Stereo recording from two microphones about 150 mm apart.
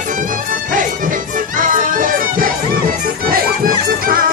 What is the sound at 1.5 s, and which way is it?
Music, 60° right (ahead or behind).